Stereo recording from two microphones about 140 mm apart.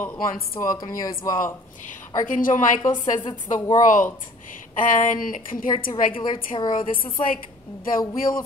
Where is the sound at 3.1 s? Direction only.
35° left (ahead or behind).